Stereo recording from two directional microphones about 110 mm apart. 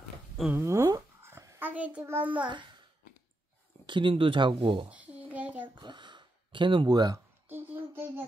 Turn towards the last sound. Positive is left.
turn(degrees=-35)  # may be behind; listen again after turning